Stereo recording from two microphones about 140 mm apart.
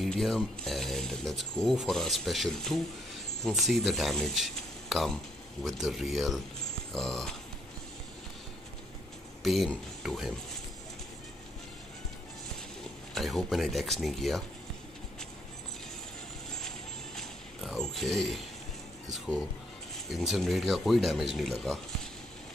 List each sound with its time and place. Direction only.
0.0 s speech: centre (ahead or behind)
9.4 s speech: centre (ahead or behind)
13.1 s speech: centre (ahead or behind)
16.5 s music: centre (ahead or behind)
19.0 s speech: centre (ahead or behind)